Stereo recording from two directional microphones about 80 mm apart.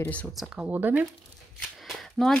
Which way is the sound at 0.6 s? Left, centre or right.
Right.